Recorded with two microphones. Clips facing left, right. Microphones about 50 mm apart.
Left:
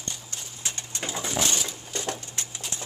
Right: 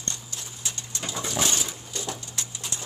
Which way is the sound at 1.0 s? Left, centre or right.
Left.